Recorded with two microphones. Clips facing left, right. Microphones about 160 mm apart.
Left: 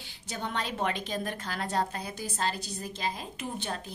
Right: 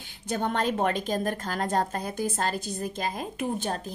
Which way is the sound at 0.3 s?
50° right (ahead or behind).